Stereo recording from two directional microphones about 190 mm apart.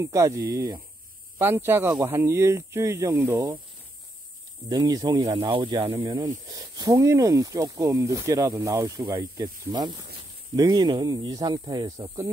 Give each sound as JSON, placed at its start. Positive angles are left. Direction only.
{"t": 0.0, "sound": "speech", "side_deg": -15}
{"t": 4.6, "sound": "speech", "side_deg": -20}